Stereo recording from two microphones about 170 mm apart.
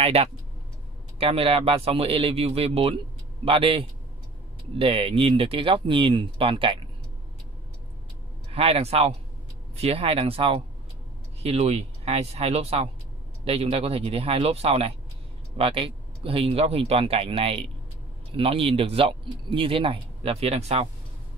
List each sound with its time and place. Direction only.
0.0 s speech: 35° right (ahead or behind)
8.5 s speech: 35° right (ahead or behind)